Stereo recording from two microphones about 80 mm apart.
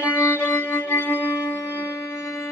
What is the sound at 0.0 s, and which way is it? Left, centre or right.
Music, left.